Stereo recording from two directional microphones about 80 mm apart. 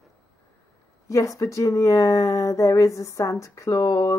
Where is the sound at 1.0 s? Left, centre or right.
Left.